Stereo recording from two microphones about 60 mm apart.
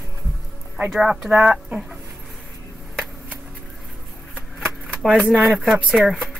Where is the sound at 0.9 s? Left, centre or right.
Centre.